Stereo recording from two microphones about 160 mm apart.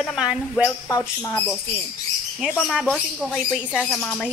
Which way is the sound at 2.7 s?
Centre (ahead or behind).